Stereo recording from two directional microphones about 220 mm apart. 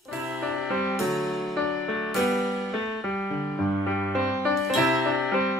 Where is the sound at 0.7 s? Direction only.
Centre (ahead or behind).